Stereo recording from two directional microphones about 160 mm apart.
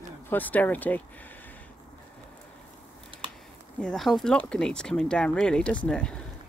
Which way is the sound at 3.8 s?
5° left (ahead or behind).